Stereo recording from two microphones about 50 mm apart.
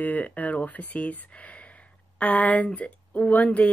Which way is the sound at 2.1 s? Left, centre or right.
Left.